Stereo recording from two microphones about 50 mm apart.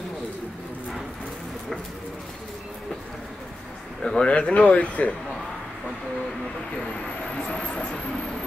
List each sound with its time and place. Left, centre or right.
4.0 s speech: centre
7.3 s speech: left